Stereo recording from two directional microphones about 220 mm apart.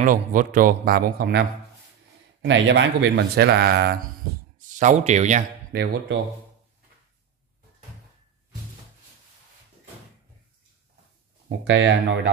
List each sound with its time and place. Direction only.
0.0 s a man's voice: 35° right (ahead or behind)
2.4 s speech: 55° right (ahead or behind)
4.6 s speech: 35° right (ahead or behind)
5.7 s speech: 45° right (ahead or behind)
11.4 s speech: 55° right (ahead or behind)